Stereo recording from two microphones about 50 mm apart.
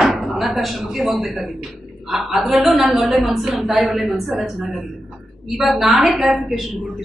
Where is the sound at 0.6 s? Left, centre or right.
Centre.